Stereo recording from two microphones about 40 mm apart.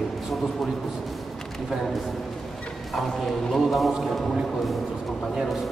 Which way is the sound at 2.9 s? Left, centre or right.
Centre.